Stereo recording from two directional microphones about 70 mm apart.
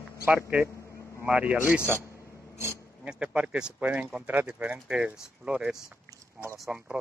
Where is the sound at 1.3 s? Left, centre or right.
Centre.